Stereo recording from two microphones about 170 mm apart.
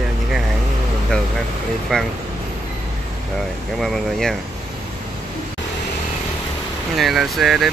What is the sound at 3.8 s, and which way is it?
Speech, centre (ahead or behind).